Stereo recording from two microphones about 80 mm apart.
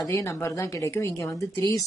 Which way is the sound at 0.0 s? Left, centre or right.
Left.